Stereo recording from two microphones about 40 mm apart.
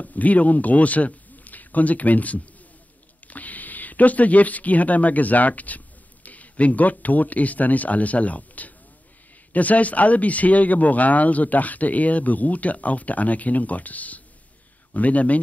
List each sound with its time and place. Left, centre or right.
0.0 s a man's voice: left